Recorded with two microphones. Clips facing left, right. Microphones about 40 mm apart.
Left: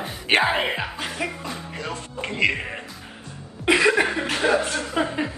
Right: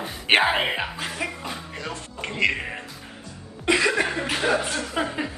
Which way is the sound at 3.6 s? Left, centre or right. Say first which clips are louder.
Left 3 dB; left.